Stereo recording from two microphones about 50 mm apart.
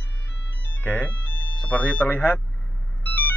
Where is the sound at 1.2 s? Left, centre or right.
Left.